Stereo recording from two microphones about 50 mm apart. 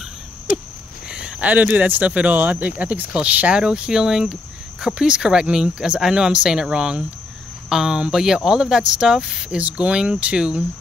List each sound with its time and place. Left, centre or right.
1.0 s a sound: centre
1.4 s speech: right
3.1 s speech: right